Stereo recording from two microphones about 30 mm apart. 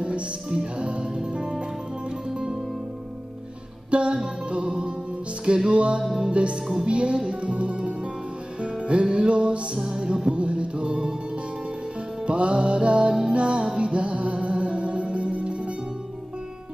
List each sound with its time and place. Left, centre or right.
0.0 s music: right
3.9 s music: right
6.0 s music: centre
6.3 s music: right
9.8 s music: right
10.3 s music: right
12.3 s music: right